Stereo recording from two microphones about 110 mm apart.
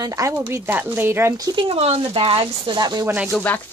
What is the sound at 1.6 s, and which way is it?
Speech, 60° right (ahead or behind).